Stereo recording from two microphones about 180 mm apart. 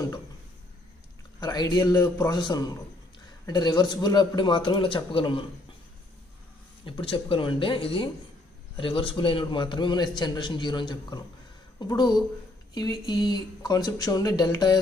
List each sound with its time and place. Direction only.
1.4 s a man's voice: 20° left (ahead or behind)
6.8 s a man's voice: 30° left (ahead or behind)